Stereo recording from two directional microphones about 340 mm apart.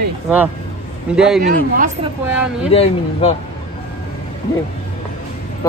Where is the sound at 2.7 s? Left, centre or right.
Centre.